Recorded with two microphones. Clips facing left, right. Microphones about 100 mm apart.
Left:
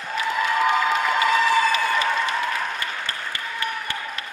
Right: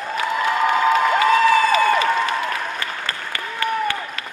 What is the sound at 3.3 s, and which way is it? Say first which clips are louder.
Applause: right 8 dB; 90° right.